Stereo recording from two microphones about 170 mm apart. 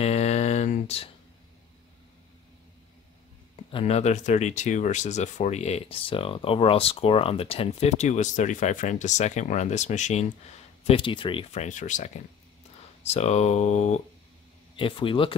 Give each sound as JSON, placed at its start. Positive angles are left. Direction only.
{"t": 0.0, "sound": "a sound", "side_deg": 40}
{"t": 3.5, "sound": "speech", "side_deg": 35}
{"t": 10.8, "sound": "speech", "side_deg": 35}
{"t": 14.8, "sound": "speech", "side_deg": 30}